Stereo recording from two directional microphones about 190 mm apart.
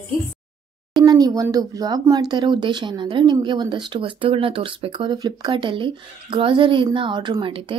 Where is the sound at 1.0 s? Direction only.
20° right (ahead or behind).